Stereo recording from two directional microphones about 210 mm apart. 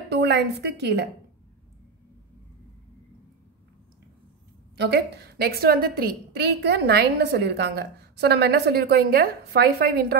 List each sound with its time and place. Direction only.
0.1 s a woman's voice: 55° right (ahead or behind)
4.7 s a woman's voice: 55° right (ahead or behind)